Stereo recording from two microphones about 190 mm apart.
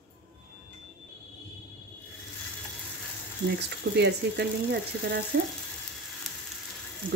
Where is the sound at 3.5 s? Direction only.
65° right (ahead or behind).